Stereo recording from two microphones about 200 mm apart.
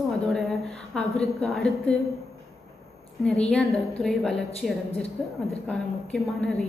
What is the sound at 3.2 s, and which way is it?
A woman's voice, 5° left (ahead or behind).